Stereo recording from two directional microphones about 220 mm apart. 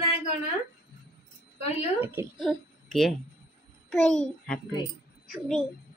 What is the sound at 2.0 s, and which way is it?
A child's voice, 10° right (ahead or behind).